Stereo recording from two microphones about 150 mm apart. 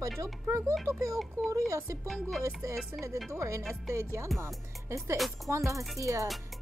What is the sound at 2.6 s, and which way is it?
A woman's voice, 20° right (ahead or behind).